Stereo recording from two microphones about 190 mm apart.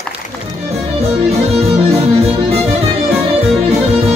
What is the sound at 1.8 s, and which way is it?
Music, 30° right (ahead or behind).